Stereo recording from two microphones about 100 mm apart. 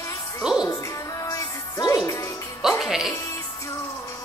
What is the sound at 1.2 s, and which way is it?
Music, 35° left (ahead or behind).